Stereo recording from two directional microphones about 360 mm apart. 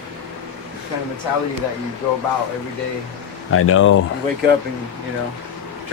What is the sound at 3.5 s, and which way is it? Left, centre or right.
Speech, left.